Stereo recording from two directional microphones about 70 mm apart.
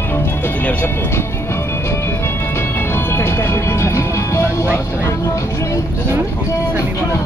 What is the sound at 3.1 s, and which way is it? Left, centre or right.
Speech, left.